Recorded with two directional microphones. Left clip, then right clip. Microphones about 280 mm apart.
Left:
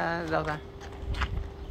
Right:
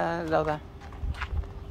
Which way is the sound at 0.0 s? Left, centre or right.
Centre.